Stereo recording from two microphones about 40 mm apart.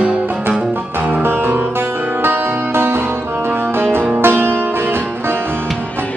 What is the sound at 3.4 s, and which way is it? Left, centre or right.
Music, right.